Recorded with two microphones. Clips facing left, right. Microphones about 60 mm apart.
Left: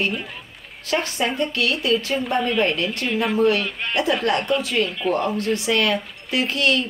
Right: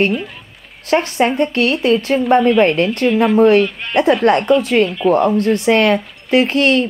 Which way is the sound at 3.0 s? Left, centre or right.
Centre.